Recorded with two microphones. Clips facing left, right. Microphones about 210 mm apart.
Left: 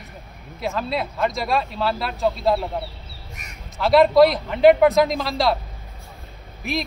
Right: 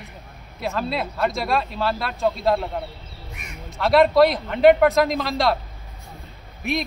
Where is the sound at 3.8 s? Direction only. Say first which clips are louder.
Left 1 dB; centre (ahead or behind).